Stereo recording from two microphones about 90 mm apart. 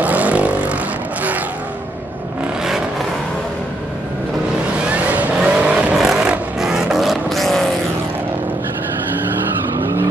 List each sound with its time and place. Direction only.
0.0 s vehicle: 15° right (ahead or behind)
4.9 s vehicle: 15° right (ahead or behind); by 7.6 s centre (ahead or behind)
9.8 s vehicle: 35° right (ahead or behind)